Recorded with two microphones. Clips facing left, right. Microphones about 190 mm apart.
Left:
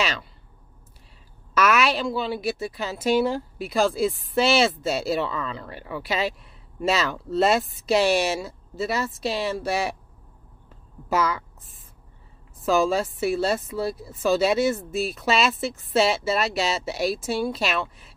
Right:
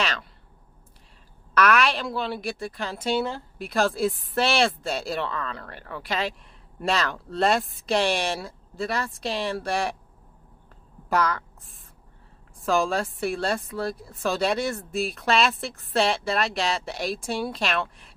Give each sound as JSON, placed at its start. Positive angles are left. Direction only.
{"t": 0.0, "sound": "speech", "side_deg": 5}
{"t": 1.5, "sound": "speech", "side_deg": 5}
{"t": 11.1, "sound": "a woman's voice", "side_deg": 5}